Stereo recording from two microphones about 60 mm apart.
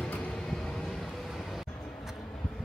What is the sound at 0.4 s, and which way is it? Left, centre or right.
Vehicle, centre.